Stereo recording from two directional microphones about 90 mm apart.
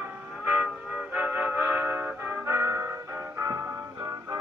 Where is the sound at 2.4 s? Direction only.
30° right (ahead or behind).